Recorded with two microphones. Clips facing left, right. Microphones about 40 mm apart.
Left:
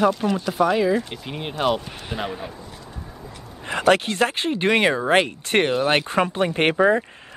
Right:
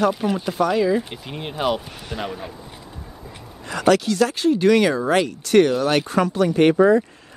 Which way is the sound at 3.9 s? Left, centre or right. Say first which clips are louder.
Right 1 dB; left.